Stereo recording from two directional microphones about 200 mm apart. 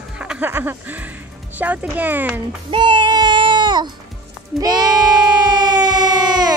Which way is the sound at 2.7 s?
25° right (ahead or behind).